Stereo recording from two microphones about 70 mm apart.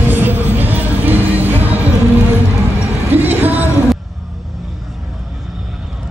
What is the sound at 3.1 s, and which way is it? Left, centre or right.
Music, right.